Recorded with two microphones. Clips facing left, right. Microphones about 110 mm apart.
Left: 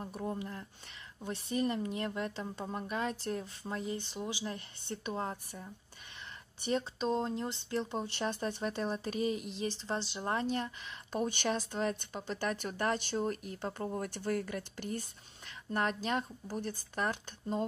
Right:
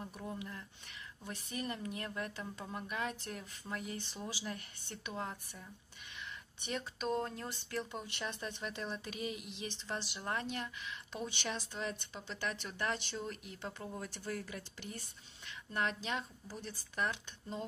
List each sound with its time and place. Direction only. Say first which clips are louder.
0.0 s speech: left 6 dB; 35° left (ahead or behind)
11.1 s speech: left 8 dB; 50° left (ahead or behind)